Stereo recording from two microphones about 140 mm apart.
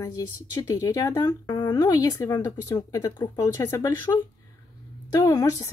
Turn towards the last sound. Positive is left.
turn(degrees=25)  # may be behind; listen again after turning